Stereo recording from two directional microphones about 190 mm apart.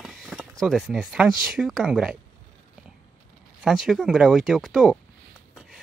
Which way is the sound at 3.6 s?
Centre (ahead or behind).